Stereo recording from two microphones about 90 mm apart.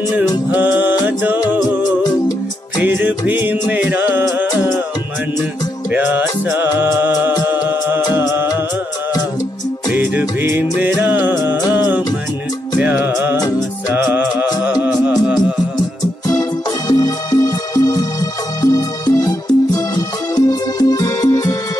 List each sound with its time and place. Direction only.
0.5 s music: 20° right (ahead or behind)
2.8 s music: 15° right (ahead or behind)
5.9 s music: 20° right (ahead or behind)
9.9 s music: 20° right (ahead or behind)
16.3 s music: 40° left (ahead or behind)